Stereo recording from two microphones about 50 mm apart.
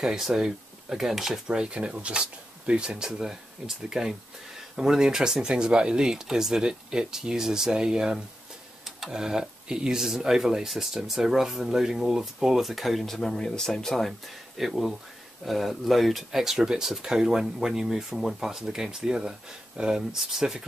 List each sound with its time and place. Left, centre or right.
0.0 s speech: centre
1.6 s speech: right